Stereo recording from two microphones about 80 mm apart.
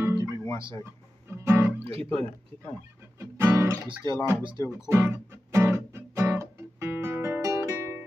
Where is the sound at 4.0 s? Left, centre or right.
Left.